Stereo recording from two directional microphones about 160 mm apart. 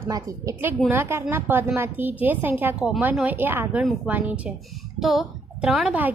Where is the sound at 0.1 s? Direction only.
20° right (ahead or behind).